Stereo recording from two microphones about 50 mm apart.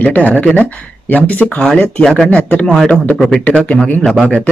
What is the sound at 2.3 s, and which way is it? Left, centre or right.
Speech, left.